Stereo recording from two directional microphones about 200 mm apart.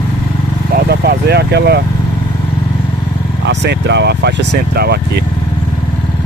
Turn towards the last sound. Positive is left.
turn(degrees=-55)  # may be behind; listen again after turning